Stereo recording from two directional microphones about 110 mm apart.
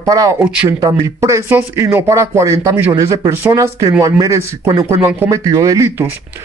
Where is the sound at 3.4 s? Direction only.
20° right (ahead or behind).